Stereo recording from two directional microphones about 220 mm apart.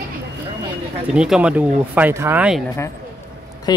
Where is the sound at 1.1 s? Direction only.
5° right (ahead or behind).